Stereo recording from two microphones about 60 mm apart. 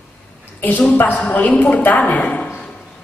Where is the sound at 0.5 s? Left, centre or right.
Left.